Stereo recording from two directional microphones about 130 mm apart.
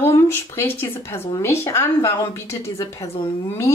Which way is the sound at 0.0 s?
20° left (ahead or behind).